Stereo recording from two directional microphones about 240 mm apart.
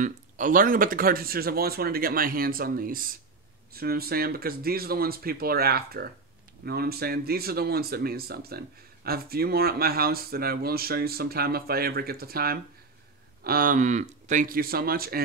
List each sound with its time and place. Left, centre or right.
0.0 s speech: right